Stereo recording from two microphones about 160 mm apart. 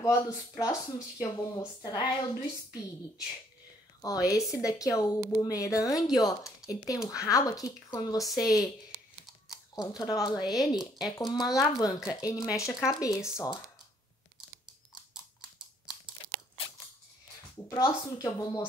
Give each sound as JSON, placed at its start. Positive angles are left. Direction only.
{"t": 0.0, "sound": "speech", "side_deg": 20}
{"t": 4.0, "sound": "speech", "side_deg": 20}
{"t": 9.8, "sound": "speech", "side_deg": 25}
{"t": 17.6, "sound": "speech", "side_deg": 20}